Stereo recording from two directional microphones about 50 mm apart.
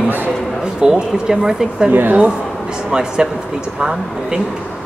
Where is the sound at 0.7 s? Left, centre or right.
Centre.